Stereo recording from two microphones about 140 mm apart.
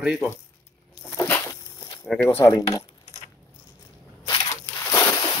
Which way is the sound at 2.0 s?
5° left (ahead or behind).